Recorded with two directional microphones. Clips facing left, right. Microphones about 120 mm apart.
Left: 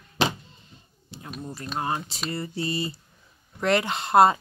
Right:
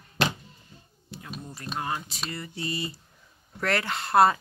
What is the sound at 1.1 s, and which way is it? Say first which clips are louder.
Computer keyboard: right 1 dB; 25° left (ahead or behind).